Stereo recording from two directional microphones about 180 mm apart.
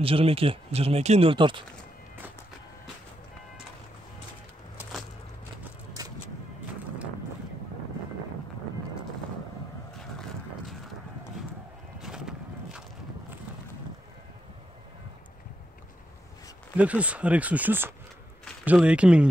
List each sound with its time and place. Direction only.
0.0 s speech: 30° right (ahead or behind)
12.0 s horse: 5° right (ahead or behind)
16.7 s speech: 5° right (ahead or behind)